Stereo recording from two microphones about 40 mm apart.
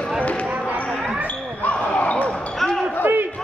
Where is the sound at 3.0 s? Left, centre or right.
Right.